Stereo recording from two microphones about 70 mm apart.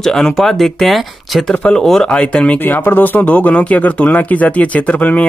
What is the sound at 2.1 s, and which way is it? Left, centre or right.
Speech, centre.